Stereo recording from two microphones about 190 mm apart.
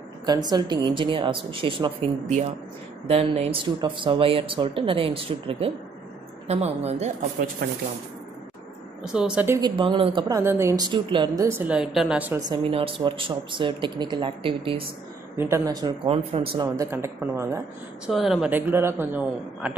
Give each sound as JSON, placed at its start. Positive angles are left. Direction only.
{"t": 0.2, "sound": "a woman's voice", "side_deg": -20}
{"t": 7.6, "sound": "speech", "side_deg": -55}
{"t": 9.0, "sound": "a woman's voice", "side_deg": -5}
{"t": 9.6, "sound": "a woman's voice", "side_deg": -25}
{"t": 10.9, "sound": "a woman's voice", "side_deg": -25}
{"t": 11.4, "sound": "a man's voice", "side_deg": -10}
{"t": 12.4, "sound": "a woman's voice", "side_deg": -25}
{"t": 15.3, "sound": "a woman's voice", "side_deg": -10}
{"t": 16.6, "sound": "a man's voice", "side_deg": -15}
{"t": 18.0, "sound": "a man's voice", "side_deg": 0}